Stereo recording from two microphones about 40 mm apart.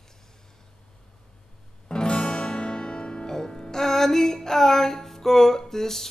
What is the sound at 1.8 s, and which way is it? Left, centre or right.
Music, left.